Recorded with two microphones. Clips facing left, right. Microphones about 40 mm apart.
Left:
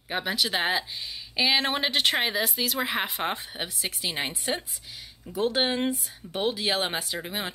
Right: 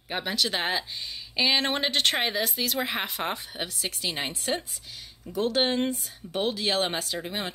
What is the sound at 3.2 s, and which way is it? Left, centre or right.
Speech, centre.